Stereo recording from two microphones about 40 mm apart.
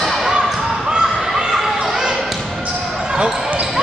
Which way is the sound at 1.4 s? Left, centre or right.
Centre.